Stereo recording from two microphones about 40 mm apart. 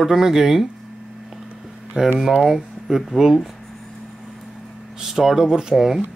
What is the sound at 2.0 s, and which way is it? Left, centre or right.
Speech, right.